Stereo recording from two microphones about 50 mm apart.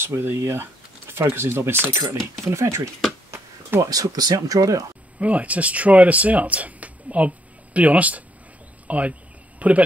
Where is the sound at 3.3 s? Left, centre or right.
Right.